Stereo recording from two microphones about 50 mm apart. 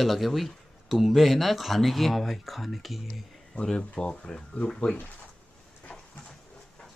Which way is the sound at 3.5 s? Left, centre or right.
Centre.